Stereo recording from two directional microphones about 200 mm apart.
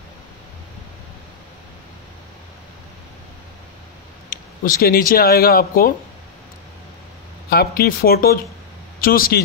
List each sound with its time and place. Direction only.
4.3 s speech: 45° left (ahead or behind)
7.4 s speech: 50° left (ahead or behind)